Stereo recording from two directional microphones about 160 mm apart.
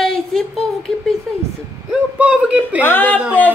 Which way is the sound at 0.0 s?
5° left (ahead or behind).